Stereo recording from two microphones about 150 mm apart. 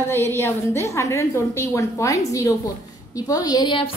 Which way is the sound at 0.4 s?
20° left (ahead or behind).